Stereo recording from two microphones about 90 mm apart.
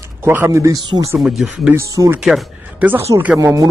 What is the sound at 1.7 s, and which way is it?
Speech, 35° right (ahead or behind).